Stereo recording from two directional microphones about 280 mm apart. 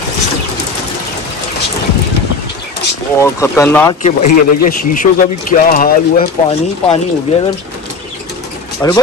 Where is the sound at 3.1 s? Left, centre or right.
Centre.